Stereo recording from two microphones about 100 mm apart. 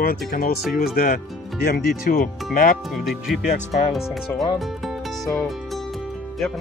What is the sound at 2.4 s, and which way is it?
Speech, centre (ahead or behind).